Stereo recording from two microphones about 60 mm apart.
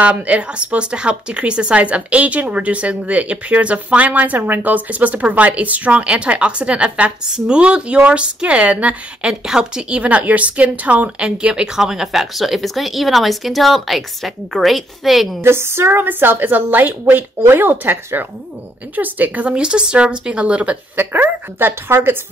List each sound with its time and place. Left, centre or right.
0.0 s speech: right
9.3 s a woman's voice: centre
15.4 s a woman's voice: right